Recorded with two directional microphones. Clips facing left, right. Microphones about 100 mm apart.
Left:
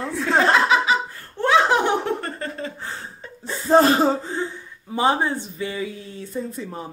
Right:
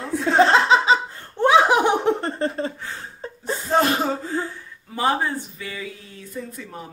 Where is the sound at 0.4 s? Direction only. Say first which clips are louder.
Right 2 dB; 30° right (ahead or behind).